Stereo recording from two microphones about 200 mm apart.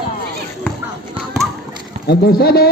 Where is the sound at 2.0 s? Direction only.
55° left (ahead or behind).